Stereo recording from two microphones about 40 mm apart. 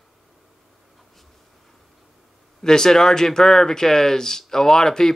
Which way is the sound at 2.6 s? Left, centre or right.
Centre.